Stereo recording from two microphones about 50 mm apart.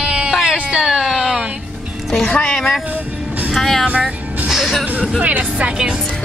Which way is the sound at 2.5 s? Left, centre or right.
Centre.